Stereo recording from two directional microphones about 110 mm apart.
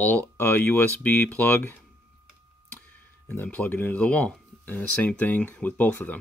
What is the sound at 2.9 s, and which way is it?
Speech, 15° left (ahead or behind).